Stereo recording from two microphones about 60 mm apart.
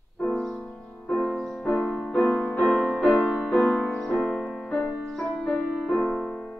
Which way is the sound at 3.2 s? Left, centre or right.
Centre.